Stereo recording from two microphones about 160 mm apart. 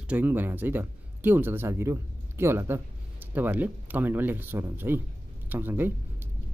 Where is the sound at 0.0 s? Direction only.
10° right (ahead or behind).